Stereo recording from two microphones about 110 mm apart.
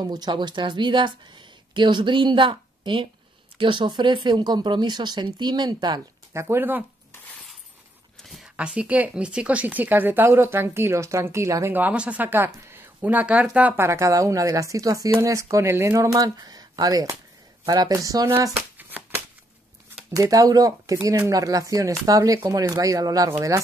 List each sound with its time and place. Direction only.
0.0 s speech: 40° right (ahead or behind)
6.3 s speech: 20° right (ahead or behind)
8.2 s a sound: centre (ahead or behind)
8.5 s speech: 10° right (ahead or behind); by 11.7 s 25° right (ahead or behind)
11.7 s speech: 15° right (ahead or behind)
13.8 s speech: 25° right (ahead or behind)
18.8 s shuffling cards: 15° right (ahead or behind)
20.1 s speech: 35° right (ahead or behind)